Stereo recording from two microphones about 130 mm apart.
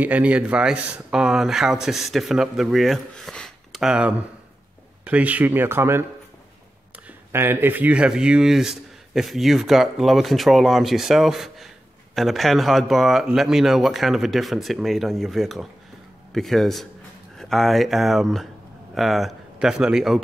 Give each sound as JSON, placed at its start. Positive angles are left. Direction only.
{"t": 0.0, "sound": "speech", "side_deg": -10}
{"t": 7.1, "sound": "speech", "side_deg": -15}